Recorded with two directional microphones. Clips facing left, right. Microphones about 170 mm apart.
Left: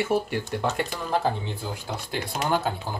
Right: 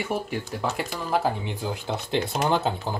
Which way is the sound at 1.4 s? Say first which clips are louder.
Right 3 dB; 15° right (ahead or behind).